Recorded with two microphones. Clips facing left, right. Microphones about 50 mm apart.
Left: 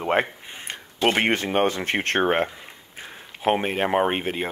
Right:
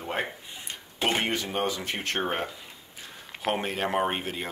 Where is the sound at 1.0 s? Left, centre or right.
Left.